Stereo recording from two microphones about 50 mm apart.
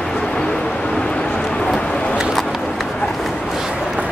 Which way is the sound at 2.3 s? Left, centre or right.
Centre.